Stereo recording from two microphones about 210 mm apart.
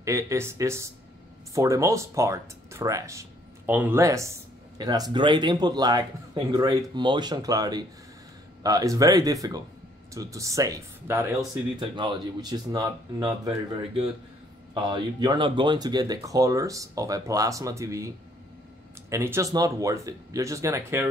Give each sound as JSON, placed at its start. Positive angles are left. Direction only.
{"t": 0.0, "sound": "speech", "side_deg": -15}
{"t": 14.7, "sound": "speech", "side_deg": -20}